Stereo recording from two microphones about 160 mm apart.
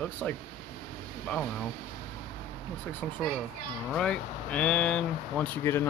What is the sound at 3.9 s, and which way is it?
Speech, 5° left (ahead or behind).